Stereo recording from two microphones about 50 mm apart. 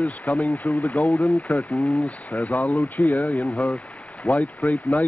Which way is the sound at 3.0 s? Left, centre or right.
Left.